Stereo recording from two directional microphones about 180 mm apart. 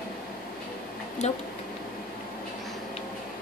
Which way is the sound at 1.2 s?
35° left (ahead or behind).